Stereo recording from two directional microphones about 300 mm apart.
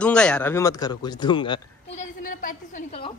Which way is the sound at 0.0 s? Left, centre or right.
Centre.